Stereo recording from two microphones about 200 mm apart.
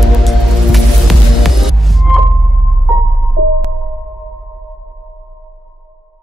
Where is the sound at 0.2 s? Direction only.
Centre (ahead or behind).